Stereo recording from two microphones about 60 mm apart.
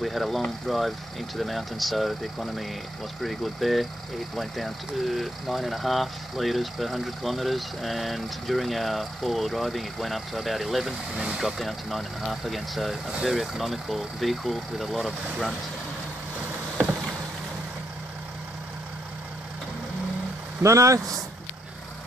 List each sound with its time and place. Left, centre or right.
0.0 s speech: centre
16.3 s vehicle: right
20.6 s speech: right